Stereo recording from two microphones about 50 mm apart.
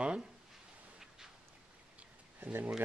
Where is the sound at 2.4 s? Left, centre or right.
Right.